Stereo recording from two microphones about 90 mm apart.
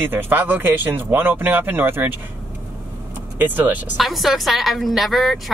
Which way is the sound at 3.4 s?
20° right (ahead or behind).